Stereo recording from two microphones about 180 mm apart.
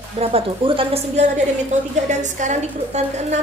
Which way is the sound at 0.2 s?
30° right (ahead or behind).